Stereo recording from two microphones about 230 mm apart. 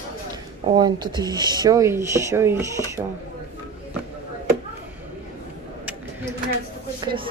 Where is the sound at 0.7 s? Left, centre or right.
Centre.